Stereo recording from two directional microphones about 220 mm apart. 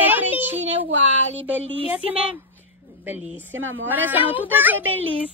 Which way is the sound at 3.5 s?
60° right (ahead or behind).